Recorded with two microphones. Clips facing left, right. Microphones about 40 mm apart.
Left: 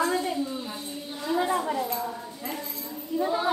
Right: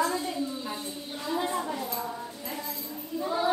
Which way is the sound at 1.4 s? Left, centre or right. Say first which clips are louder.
Left 6 dB; left.